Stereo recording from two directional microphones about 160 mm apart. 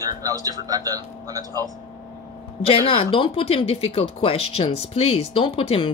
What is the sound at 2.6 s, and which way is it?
Speech, 35° left (ahead or behind).